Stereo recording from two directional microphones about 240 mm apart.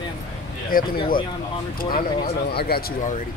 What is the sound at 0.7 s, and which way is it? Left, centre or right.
Speech, left.